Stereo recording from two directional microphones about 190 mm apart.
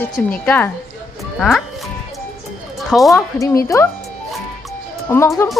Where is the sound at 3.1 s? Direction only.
15° left (ahead or behind).